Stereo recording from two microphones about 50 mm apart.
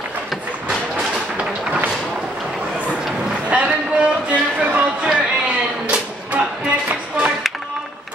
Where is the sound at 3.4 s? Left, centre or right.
Right.